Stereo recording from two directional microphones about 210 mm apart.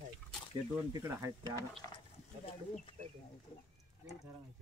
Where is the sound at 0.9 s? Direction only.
15° right (ahead or behind).